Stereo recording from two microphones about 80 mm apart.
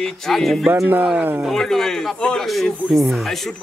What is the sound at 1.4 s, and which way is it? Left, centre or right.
Speech, centre.